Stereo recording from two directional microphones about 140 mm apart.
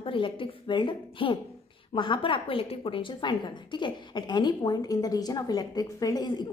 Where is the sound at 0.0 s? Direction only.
40° left (ahead or behind).